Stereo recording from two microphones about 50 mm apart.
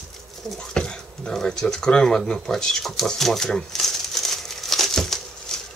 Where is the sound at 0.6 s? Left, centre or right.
Centre.